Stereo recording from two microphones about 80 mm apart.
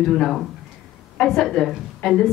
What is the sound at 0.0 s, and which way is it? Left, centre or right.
A woman's voice, centre.